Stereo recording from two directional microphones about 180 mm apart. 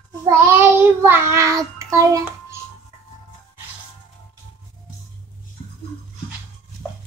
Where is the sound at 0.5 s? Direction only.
10° right (ahead or behind).